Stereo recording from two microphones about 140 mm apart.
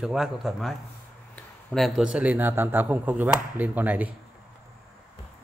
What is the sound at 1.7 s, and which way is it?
Speech, centre (ahead or behind).